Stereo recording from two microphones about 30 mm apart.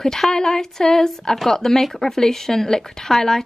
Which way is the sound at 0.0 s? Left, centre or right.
Centre.